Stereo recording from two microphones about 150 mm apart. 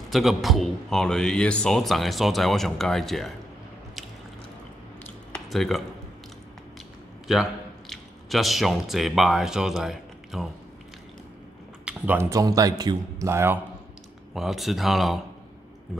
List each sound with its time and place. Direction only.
0.1 s a man's voice: centre (ahead or behind)
5.0 s a sound: 5° left (ahead or behind)
7.9 s speech: centre (ahead or behind)
11.8 s a sound: 10° right (ahead or behind)
12.3 s a man's voice: 25° right (ahead or behind)
14.3 s a man's voice: centre (ahead or behind)